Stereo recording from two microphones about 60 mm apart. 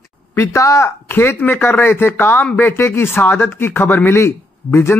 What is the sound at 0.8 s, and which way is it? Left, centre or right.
Speech, left.